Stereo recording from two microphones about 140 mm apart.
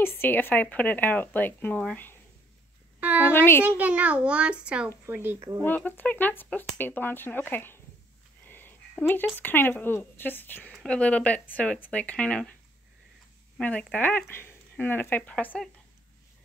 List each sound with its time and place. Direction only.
0.0 s speech: 15° left (ahead or behind)
3.0 s speech: 10° right (ahead or behind)
3.3 s speech: 15° left (ahead or behind)
3.6 s a child's voice: 10° right (ahead or behind)
5.6 s speech: 15° left (ahead or behind)
8.5 s a sound: 15° left (ahead or behind)
9.4 s speech: 15° left (ahead or behind)
13.6 s speech: 10° left (ahead or behind)